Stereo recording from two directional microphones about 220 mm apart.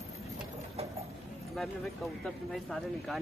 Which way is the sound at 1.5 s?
Centre (ahead or behind).